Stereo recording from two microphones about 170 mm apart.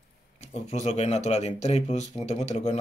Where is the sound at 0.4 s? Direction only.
40° left (ahead or behind).